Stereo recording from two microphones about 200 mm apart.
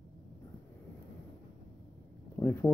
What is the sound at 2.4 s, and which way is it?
Speech, 10° left (ahead or behind).